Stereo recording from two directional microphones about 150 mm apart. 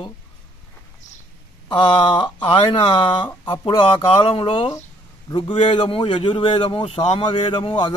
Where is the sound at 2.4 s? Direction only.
35° left (ahead or behind).